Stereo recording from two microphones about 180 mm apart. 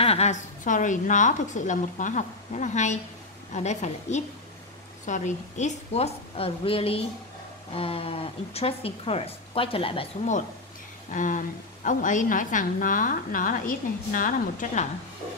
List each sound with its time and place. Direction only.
0.0 s a woman's voice: 35° left (ahead or behind)
11.1 s a woman's voice: 45° left (ahead or behind)